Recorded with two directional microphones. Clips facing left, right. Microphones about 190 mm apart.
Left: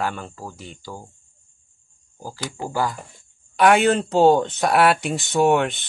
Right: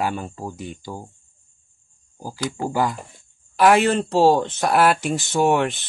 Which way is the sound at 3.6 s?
Centre (ahead or behind).